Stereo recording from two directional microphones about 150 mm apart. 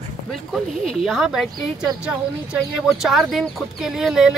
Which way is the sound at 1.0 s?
Centre (ahead or behind).